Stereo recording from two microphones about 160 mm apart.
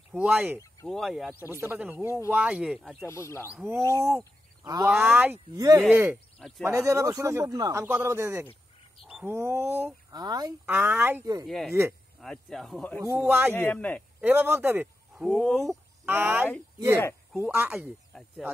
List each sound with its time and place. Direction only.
0.1 s speech: 5° right (ahead or behind)
1.5 s speech: 15° right (ahead or behind); by 3.1 s centre (ahead or behind)
3.1 s speech: 15° left (ahead or behind)
3.6 s speech: 15° right (ahead or behind)
5.8 s speech: 10° right (ahead or behind)
10.1 s speech: 25° right (ahead or behind)
10.6 s speech: 10° right (ahead or behind)
11.4 s speech: centre (ahead or behind)
13.0 s speech: 15° right (ahead or behind)
13.6 s speech: 10° left (ahead or behind)
14.2 s speech: 10° right (ahead or behind)
16.1 s speech: 15° right (ahead or behind)